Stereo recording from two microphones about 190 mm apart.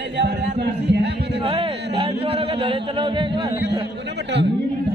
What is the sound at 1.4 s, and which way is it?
Speech, 30° right (ahead or behind).